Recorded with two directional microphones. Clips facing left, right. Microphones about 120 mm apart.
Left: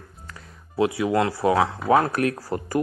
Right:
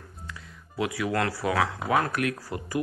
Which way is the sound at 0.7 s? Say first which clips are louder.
Left 6 dB; 25° left (ahead or behind).